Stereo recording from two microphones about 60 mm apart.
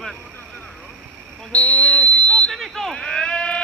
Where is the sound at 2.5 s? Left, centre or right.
Centre.